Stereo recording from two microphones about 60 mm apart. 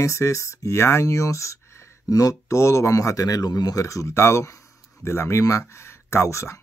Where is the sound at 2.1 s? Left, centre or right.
Left.